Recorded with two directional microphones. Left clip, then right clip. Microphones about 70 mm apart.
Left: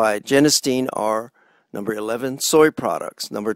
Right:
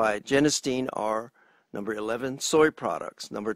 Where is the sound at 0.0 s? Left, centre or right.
Left.